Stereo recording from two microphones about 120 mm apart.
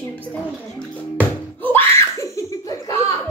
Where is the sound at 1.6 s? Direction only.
20° left (ahead or behind).